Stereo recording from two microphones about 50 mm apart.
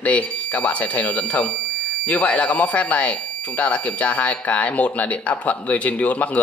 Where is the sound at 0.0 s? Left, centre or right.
Left.